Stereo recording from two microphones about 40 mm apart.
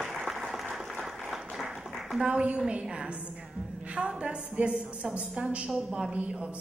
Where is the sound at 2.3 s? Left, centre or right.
Right.